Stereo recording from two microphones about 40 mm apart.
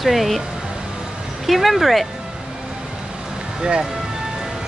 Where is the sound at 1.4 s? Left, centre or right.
Centre.